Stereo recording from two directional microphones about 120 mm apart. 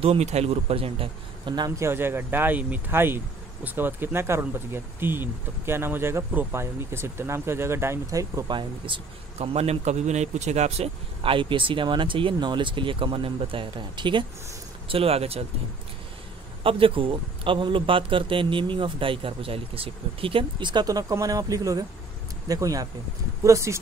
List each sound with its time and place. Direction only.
0.0 s speech: 60° right (ahead or behind)
1.8 s speech: 20° right (ahead or behind)
8.5 s speech: 45° right (ahead or behind); by 10.9 s 70° right (ahead or behind)
11.2 s a man's voice: 45° right (ahead or behind)
14.9 s speech: 55° right (ahead or behind)
16.6 s a man's voice: 50° right (ahead or behind); by 23.8 s 25° right (ahead or behind)